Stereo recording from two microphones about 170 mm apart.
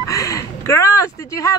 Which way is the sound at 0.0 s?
20° left (ahead or behind).